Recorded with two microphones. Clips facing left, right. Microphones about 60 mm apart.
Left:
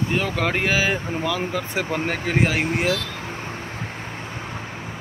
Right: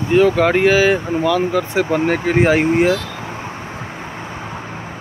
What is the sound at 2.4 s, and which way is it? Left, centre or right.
Speech, right.